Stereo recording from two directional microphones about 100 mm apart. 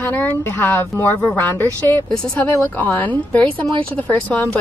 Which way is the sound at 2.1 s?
10° left (ahead or behind).